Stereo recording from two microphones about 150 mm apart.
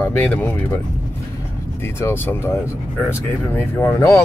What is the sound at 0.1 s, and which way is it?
Speech, 10° left (ahead or behind).